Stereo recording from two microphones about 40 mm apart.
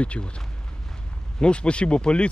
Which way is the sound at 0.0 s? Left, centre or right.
Left.